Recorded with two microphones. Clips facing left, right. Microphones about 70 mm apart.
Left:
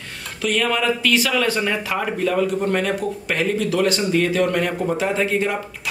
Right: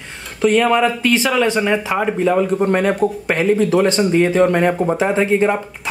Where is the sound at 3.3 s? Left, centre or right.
Right.